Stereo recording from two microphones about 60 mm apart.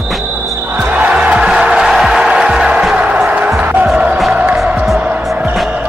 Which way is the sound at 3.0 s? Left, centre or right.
Centre.